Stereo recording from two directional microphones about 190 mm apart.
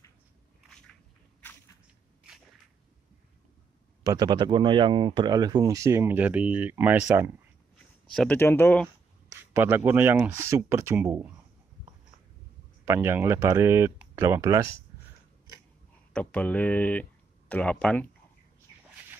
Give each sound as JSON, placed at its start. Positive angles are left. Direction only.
{"t": 4.0, "sound": "speech", "side_deg": -20}
{"t": 8.1, "sound": "speech", "side_deg": 5}
{"t": 9.5, "sound": "speech", "side_deg": -10}
{"t": 12.8, "sound": "speech", "side_deg": -15}
{"t": 16.1, "sound": "speech", "side_deg": 5}